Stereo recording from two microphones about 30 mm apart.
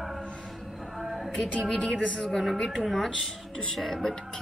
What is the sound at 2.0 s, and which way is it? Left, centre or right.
Speech, left.